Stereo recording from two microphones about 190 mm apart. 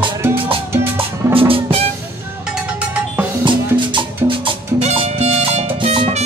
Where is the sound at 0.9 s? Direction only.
30° right (ahead or behind).